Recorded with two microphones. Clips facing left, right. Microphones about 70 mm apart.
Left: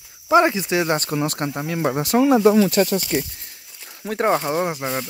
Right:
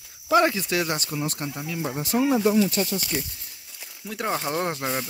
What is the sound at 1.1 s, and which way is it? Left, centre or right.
Speech, left.